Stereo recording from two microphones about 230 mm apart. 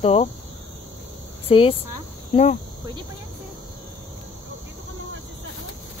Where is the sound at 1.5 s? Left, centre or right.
Left.